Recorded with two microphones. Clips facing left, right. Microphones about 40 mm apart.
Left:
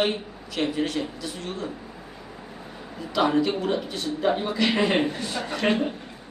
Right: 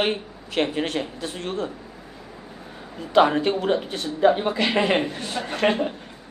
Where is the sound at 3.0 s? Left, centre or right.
Right.